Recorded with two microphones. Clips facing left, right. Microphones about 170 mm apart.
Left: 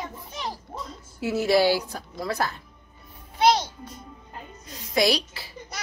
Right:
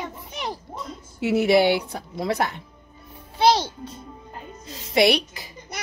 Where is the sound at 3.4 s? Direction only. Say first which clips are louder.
Right 2 dB; 30° right (ahead or behind).